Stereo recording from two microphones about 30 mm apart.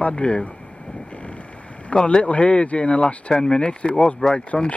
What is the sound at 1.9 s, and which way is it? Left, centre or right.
Speech, left.